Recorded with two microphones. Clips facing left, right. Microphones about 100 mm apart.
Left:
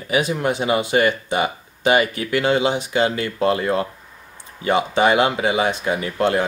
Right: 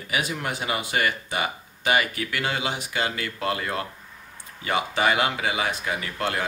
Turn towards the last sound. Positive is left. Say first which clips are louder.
# left 8 dB
turn(degrees=25)  # may be behind; listen again after turning